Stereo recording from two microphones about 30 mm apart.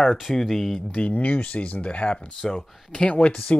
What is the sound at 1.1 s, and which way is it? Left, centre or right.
Speech, left.